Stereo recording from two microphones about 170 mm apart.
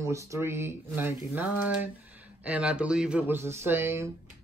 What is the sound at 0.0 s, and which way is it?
Speech, 15° right (ahead or behind).